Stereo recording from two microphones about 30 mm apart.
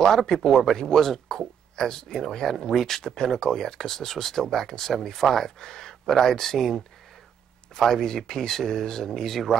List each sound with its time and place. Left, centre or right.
0.0 s speech: centre